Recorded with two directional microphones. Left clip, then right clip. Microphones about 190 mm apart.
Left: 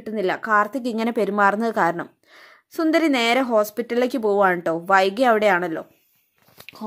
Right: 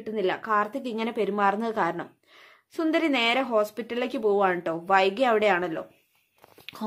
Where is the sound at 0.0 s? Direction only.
25° left (ahead or behind).